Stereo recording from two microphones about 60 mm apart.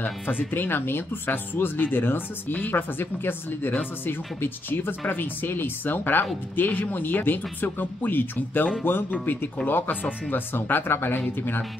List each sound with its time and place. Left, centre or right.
0.0 s speech: left